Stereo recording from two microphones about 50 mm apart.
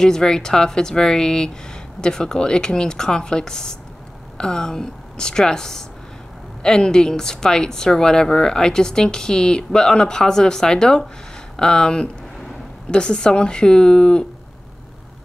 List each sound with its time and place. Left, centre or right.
0.0 s a woman's voice: centre